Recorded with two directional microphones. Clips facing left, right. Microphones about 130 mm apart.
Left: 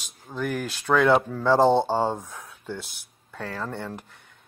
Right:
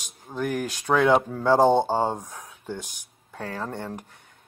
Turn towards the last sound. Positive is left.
turn(degrees=-15)  # may be behind; listen again after turning